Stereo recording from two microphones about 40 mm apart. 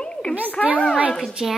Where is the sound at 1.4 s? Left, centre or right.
Centre.